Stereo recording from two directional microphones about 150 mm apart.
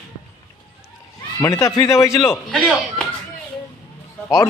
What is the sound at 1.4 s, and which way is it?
Speech, 20° left (ahead or behind).